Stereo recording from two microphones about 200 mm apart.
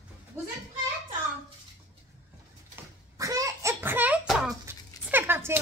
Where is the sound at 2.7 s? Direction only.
15° right (ahead or behind).